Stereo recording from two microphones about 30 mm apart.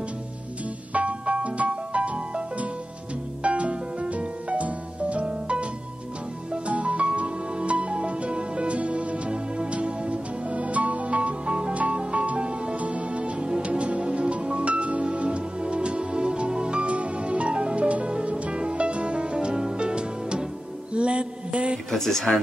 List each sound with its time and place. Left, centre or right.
0.9 s music: right
3.4 s music: right
6.7 s music: right
13.4 s music: right
13.7 s music: right
16.9 s music: right
20.9 s mantra: right
21.9 s music: centre